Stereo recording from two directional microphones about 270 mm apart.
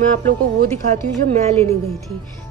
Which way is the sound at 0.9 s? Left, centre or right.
Right.